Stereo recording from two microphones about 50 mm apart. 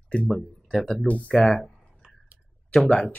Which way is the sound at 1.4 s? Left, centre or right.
Centre.